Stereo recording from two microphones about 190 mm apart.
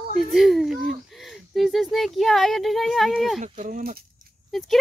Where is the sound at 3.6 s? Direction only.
45° right (ahead or behind).